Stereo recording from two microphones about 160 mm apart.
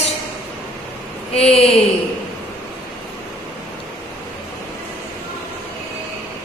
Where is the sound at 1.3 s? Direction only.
40° left (ahead or behind).